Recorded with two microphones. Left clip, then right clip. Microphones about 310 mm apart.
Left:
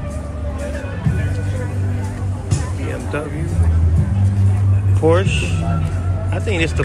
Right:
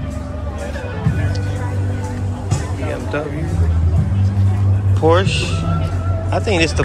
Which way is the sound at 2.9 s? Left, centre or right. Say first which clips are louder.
Right 2 dB; centre.